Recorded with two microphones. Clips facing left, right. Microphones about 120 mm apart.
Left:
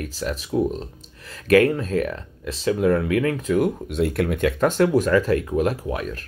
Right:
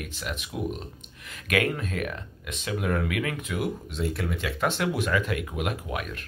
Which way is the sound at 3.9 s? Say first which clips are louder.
Left 8 dB; 60° left (ahead or behind).